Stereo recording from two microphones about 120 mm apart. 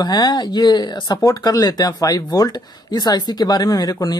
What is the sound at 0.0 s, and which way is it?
Speech, 35° left (ahead or behind).